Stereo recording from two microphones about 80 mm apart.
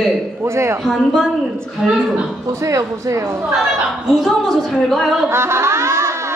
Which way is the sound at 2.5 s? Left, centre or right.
Right.